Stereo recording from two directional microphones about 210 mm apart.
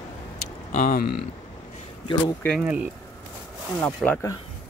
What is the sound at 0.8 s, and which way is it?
Speech, 45° left (ahead or behind).